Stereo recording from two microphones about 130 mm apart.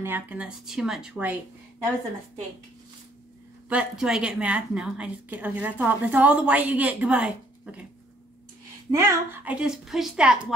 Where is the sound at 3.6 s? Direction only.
5° right (ahead or behind).